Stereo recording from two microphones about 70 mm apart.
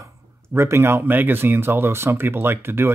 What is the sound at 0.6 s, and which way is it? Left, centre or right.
Speech, right.